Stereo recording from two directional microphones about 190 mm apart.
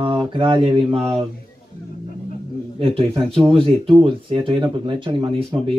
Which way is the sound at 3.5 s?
30° right (ahead or behind).